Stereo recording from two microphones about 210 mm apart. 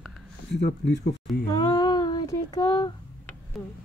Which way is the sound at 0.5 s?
55° left (ahead or behind).